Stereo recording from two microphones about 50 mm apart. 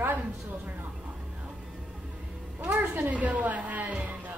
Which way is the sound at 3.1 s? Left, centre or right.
Right.